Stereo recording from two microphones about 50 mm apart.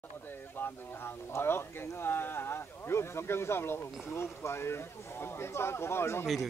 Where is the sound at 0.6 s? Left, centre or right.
Left.